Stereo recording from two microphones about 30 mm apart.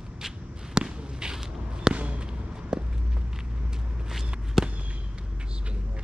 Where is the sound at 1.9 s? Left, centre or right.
Right.